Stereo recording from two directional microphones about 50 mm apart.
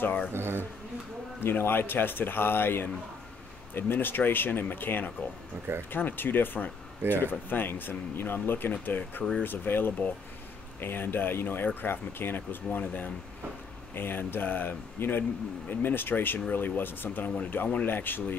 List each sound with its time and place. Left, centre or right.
0.0 s speech: left
0.3 s speech: right
1.4 s speech: left
13.9 s speech: left